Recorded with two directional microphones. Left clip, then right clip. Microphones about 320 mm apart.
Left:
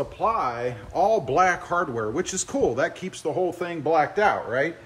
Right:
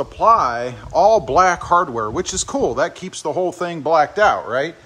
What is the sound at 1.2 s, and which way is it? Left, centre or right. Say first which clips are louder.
Speech: right 6 dB; centre.